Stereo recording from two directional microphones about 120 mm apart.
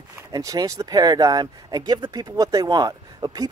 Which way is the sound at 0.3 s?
30° right (ahead or behind).